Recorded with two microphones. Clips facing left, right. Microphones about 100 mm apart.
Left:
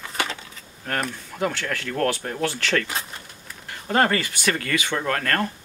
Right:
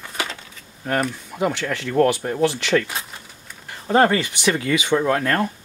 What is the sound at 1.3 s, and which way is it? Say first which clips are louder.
Speech: right 3 dB; 15° right (ahead or behind).